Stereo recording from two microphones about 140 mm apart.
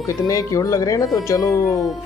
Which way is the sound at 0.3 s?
25° left (ahead or behind).